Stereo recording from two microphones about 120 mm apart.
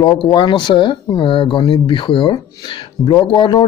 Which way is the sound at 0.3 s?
40° left (ahead or behind).